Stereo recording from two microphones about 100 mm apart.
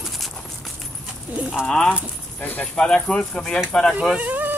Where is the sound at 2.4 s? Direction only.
15° left (ahead or behind).